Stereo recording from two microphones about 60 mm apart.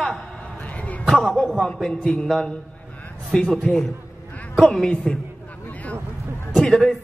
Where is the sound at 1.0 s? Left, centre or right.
Centre.